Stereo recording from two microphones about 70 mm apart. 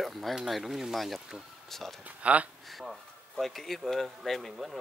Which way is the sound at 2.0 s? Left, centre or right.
Centre.